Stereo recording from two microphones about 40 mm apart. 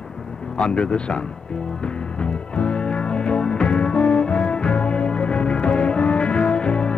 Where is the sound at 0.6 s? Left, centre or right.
Left.